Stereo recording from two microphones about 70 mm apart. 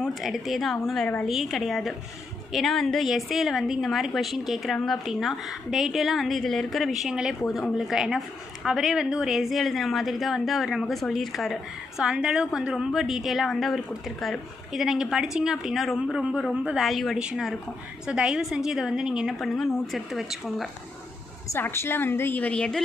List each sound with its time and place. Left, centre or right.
0.0 s a woman's voice: centre
19.3 s a woman's voice: centre
21.5 s a woman's voice: left
22.5 s a woman's voice: centre